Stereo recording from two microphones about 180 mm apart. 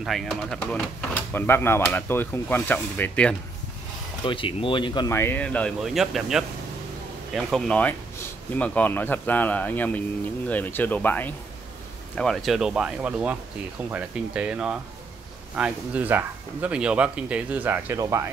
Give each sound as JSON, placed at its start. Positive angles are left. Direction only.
{"t": 0.0, "sound": "speech", "side_deg": 0}
{"t": 4.3, "sound": "speech", "side_deg": 30}
{"t": 5.1, "sound": "speech", "side_deg": 10}